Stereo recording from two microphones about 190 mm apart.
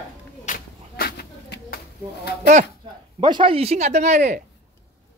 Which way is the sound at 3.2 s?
25° right (ahead or behind).